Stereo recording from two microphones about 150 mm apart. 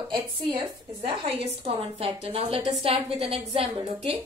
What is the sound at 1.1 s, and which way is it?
A woman's voice, 35° right (ahead or behind).